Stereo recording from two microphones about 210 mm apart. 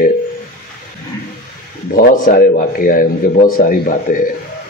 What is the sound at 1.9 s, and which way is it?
A man's voice, 40° left (ahead or behind).